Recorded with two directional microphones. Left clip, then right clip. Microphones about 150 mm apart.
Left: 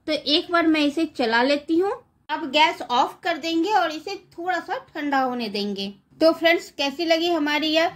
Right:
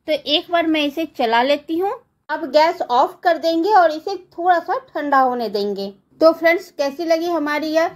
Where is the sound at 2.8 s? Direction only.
Centre (ahead or behind).